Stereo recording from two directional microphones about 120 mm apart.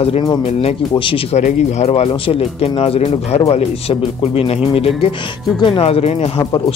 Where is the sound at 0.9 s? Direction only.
45° left (ahead or behind).